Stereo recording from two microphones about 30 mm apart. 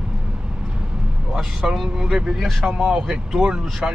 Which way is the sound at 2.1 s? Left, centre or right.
Centre.